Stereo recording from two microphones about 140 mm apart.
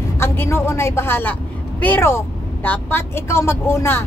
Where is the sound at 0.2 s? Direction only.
20° left (ahead or behind).